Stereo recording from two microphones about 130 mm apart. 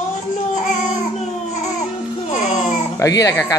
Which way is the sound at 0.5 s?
65° left (ahead or behind).